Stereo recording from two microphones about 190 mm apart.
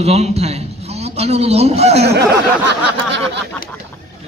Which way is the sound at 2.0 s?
60° right (ahead or behind).